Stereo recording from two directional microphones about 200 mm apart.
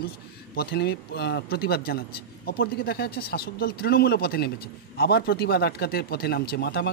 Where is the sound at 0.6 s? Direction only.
55° left (ahead or behind).